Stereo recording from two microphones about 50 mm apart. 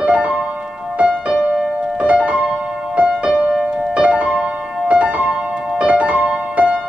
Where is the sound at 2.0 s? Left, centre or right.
Right.